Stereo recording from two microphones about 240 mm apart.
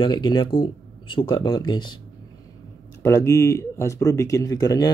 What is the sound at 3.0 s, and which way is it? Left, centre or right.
Speech, centre.